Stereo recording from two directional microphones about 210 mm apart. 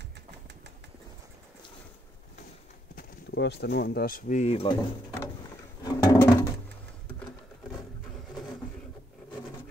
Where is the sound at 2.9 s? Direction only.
50° left (ahead or behind); by 4.7 s 30° left (ahead or behind).